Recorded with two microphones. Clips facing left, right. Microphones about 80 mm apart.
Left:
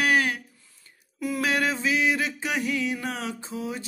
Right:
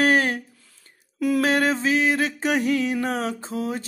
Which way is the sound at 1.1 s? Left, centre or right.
Right.